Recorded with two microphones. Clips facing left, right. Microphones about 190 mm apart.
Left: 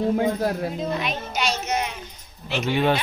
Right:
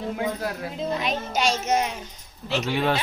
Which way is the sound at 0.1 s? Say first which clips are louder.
Left 6 dB; 40° left (ahead or behind).